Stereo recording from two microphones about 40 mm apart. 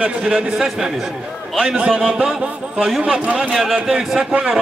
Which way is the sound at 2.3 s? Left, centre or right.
Centre.